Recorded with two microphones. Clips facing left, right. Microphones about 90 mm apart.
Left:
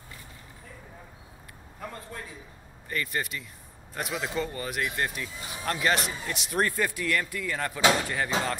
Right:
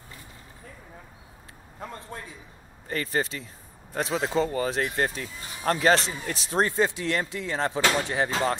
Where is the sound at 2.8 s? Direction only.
30° right (ahead or behind).